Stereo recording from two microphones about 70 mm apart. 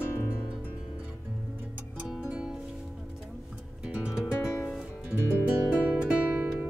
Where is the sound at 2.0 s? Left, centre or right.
Centre.